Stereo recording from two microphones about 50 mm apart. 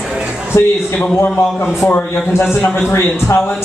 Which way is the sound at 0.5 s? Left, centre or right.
Left.